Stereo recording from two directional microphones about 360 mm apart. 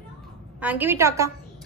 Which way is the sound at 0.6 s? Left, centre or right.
Centre.